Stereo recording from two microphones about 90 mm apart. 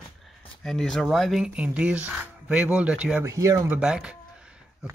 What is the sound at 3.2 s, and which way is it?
Speech, 35° right (ahead or behind).